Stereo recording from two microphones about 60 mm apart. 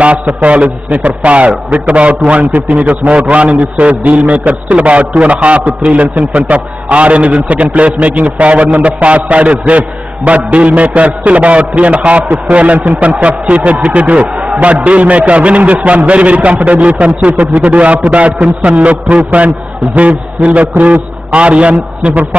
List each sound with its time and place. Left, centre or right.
0.4 s a man's voice: right